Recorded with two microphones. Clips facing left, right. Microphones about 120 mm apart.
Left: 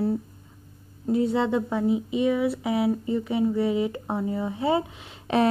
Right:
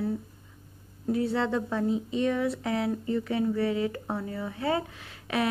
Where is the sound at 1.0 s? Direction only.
20° left (ahead or behind).